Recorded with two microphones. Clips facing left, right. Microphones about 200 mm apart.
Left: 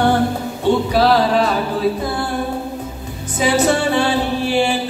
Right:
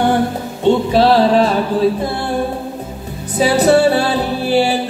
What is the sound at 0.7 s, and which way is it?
Music, 25° right (ahead or behind).